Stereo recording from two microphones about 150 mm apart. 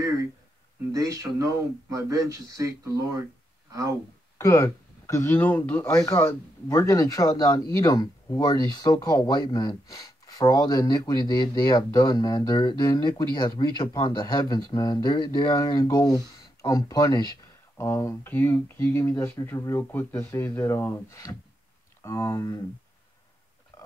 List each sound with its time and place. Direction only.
0.9 s speech: 20° right (ahead or behind)
4.4 s speech: 20° left (ahead or behind)